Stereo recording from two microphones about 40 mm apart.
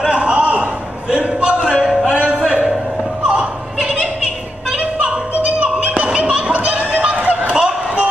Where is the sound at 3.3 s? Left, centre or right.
Right.